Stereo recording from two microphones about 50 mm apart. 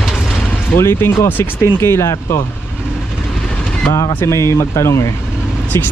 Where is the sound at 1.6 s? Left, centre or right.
Left.